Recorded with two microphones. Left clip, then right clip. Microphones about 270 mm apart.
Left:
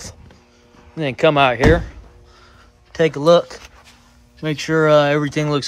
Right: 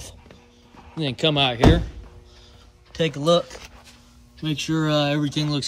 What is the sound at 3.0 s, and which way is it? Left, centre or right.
Speech, centre.